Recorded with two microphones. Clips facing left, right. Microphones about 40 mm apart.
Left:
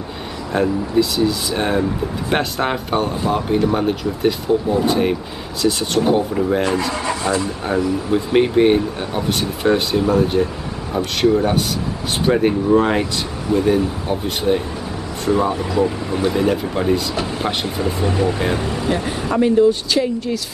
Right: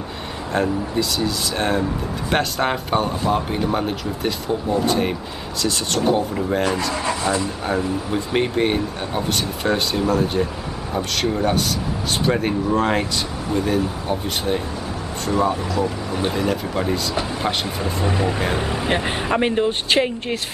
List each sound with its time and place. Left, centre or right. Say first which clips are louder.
0.5 s speech: left 3 dB; centre
8.1 s speech: left 7 dB; centre
18.0 s speech: left 2 dB; right